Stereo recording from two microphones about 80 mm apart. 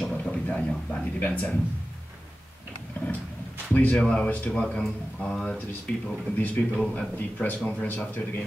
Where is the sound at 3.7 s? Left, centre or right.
Centre.